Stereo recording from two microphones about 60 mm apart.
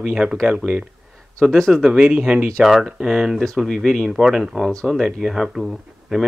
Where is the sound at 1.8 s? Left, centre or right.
Centre.